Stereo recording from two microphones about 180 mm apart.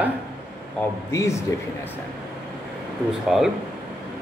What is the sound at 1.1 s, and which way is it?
Speech, 15° left (ahead or behind).